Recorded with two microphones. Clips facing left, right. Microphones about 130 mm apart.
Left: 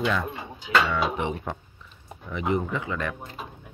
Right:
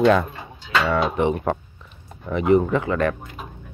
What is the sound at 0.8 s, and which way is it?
Speech, 55° right (ahead or behind).